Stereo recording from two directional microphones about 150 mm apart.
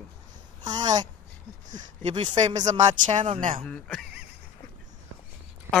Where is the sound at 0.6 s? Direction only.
30° right (ahead or behind).